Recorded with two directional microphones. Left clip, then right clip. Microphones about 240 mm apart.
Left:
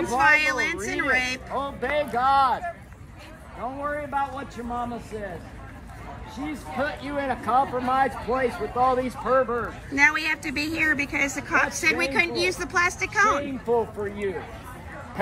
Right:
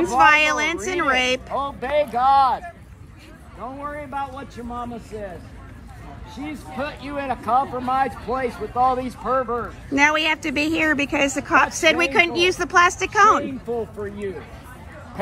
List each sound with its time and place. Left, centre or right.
0.2 s a woman's voice: centre
1.5 s speech: centre
3.6 s a woman's voice: centre
6.3 s speech: centre
9.9 s a woman's voice: centre
11.0 s a woman's voice: right
11.2 s a woman's voice: centre